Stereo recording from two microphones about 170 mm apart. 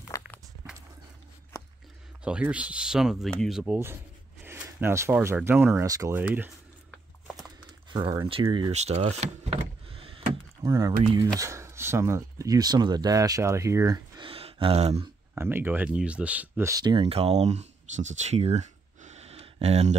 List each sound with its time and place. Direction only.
0.1 s walk: 20° left (ahead or behind)
2.2 s speech: 5° right (ahead or behind)
7.9 s speech: 25° right (ahead or behind)
8.7 s power windows: 40° right (ahead or behind)
10.6 s speech: 20° right (ahead or behind); by 15.0 s 35° right (ahead or behind)
15.3 s speech: 10° right (ahead or behind); by 20.0 s 40° right (ahead or behind)